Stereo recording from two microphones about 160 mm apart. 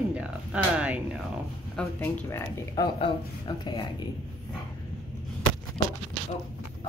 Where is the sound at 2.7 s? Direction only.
25° left (ahead or behind).